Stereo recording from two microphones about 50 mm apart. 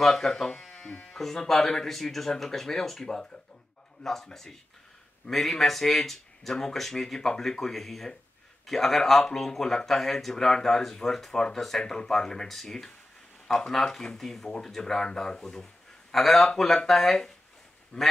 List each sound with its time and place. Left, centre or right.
0.0 s a man's voice: centre
17.9 s quack: left